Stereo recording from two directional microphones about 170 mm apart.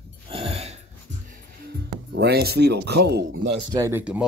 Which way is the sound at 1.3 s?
70° right (ahead or behind).